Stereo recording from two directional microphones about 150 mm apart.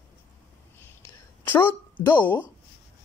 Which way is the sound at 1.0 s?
15° left (ahead or behind).